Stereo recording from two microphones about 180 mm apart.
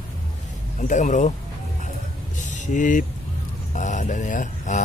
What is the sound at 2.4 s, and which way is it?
Vehicle, 45° left (ahead or behind).